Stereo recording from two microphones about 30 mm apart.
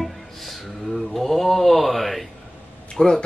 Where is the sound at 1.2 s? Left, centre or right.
Centre.